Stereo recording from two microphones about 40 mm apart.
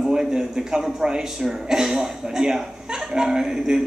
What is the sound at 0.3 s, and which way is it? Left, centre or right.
A woman's voice, centre.